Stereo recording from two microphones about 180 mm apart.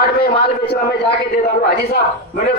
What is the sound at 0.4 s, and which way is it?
A woman's voice, 60° left (ahead or behind).